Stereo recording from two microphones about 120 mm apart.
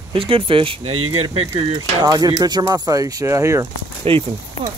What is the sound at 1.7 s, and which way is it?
Speech, 35° right (ahead or behind).